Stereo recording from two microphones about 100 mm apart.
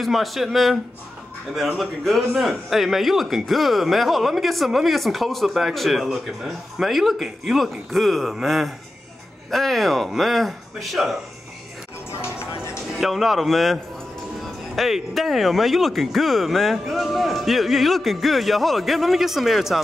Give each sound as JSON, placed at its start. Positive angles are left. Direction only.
{"t": 0.0, "sound": "a man's voice", "side_deg": 0}
{"t": 1.8, "sound": "a man's voice", "side_deg": 0}
{"t": 12.2, "sound": "music", "side_deg": 25}
{"t": 13.0, "sound": "a man's voice", "side_deg": 0}
{"t": 14.8, "sound": "a man's voice", "side_deg": 0}